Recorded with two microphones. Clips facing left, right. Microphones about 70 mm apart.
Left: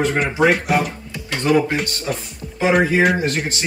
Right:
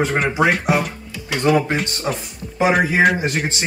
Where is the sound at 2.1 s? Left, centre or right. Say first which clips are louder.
Right 1 dB; right.